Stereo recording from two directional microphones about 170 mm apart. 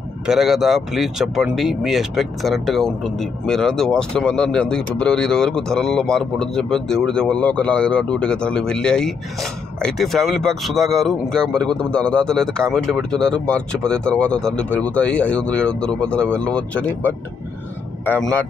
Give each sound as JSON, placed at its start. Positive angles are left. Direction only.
{"t": 0.3, "sound": "speech", "side_deg": 0}